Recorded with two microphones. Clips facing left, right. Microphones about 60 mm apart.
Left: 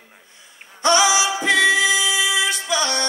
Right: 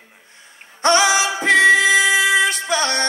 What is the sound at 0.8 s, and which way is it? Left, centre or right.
Female singing, right.